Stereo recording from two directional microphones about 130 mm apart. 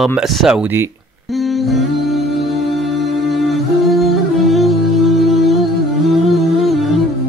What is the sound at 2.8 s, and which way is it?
Music, centre (ahead or behind).